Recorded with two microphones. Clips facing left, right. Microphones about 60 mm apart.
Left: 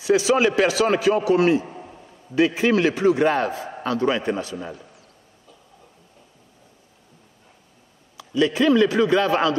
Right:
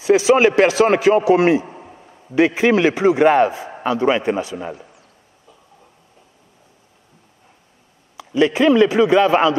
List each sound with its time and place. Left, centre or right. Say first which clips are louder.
0.0 s a man's voice: right 5 dB; right
0.4 s a man's voice: right 5 dB; right
1.7 s a sound: right 1 dB; centre
2.3 s a man's voice: right 4 dB; right
2.9 s a man's voice: right 5 dB; right
4.6 s a man's voice: right 4 dB; right
8.3 s speech: right 4 dB; right
8.8 s a man's voice: right 5 dB; right